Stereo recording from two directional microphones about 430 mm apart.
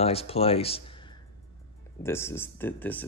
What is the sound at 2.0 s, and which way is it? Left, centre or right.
Speech, centre.